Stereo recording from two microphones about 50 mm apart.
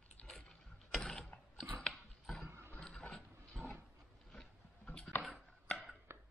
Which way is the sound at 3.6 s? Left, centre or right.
Centre.